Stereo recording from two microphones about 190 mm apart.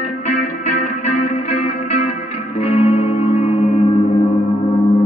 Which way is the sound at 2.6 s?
30° left (ahead or behind).